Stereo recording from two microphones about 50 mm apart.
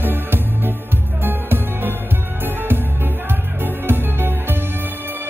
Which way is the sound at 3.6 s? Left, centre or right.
Right.